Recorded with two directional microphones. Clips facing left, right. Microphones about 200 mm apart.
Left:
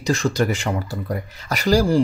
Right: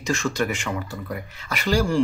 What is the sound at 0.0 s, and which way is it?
Speech, 35° left (ahead or behind).